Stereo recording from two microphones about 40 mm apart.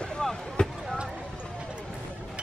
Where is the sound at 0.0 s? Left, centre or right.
Centre.